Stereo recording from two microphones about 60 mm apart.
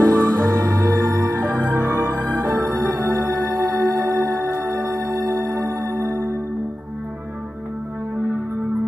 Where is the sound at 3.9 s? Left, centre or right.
Right.